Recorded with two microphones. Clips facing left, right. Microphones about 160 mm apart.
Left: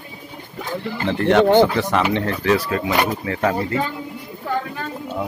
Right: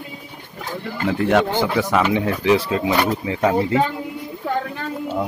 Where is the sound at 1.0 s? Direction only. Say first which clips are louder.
Left 3 dB; 5° right (ahead or behind).